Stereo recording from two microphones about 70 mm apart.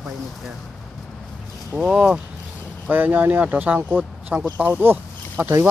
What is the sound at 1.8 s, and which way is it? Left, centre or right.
Speech, centre.